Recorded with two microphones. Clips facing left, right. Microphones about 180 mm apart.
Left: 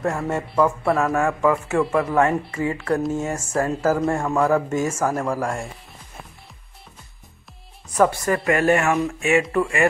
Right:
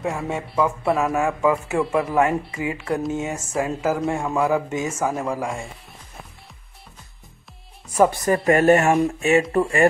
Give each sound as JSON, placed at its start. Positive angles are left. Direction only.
{"t": 0.0, "sound": "speech", "side_deg": -5}
{"t": 1.1, "sound": "a man's voice", "side_deg": -15}
{"t": 7.9, "sound": "speech", "side_deg": -10}
{"t": 8.5, "sound": "speech", "side_deg": -40}